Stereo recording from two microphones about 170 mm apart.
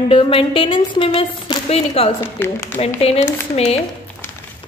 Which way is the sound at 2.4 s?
10° left (ahead or behind).